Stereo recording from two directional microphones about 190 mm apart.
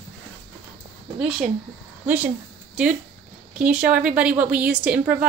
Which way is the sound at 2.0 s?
10° right (ahead or behind).